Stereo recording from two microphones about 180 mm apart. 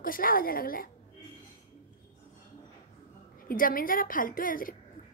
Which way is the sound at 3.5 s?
50° left (ahead or behind).